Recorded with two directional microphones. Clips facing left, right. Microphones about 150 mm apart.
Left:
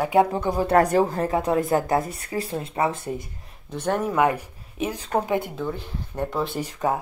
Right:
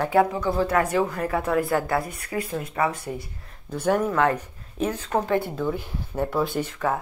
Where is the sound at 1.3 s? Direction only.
20° left (ahead or behind).